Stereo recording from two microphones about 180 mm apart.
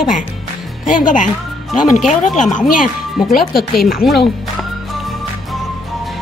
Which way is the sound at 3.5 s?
Centre (ahead or behind).